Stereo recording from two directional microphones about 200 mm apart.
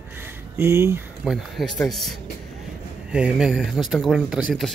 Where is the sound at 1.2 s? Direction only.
Centre (ahead or behind).